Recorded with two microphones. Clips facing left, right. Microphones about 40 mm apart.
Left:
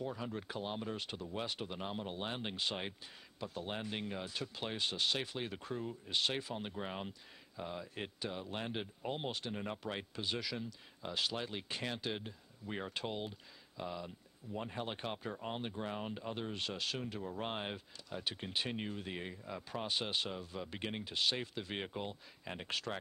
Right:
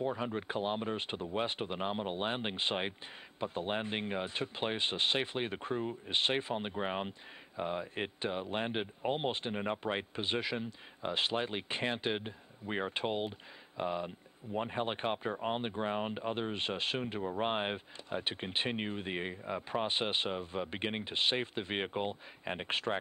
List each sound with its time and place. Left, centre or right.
0.0 s speech: right